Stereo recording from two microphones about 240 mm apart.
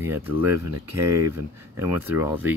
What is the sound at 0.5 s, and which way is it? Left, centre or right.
Speech, right.